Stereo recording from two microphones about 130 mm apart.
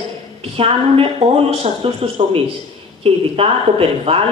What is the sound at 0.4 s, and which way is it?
Speech, 45° right (ahead or behind).